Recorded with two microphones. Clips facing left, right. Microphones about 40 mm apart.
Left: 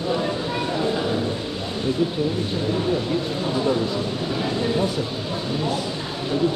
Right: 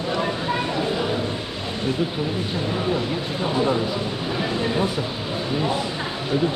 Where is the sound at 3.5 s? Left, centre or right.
Centre.